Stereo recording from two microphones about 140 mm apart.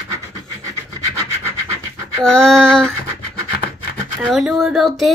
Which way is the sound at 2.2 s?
5° left (ahead or behind).